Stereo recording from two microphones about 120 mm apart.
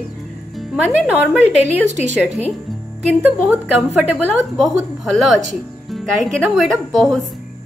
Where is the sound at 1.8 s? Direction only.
70° right (ahead or behind).